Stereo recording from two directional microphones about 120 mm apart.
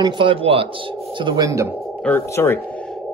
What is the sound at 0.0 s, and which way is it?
Speech, 45° right (ahead or behind).